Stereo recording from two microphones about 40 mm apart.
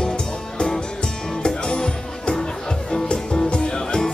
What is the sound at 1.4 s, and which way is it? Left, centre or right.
Music, centre.